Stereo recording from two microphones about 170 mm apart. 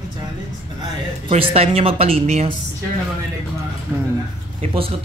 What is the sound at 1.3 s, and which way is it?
Speech, 40° right (ahead or behind).